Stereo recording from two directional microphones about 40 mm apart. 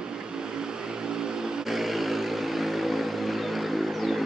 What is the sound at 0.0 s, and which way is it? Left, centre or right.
Vehicle, centre.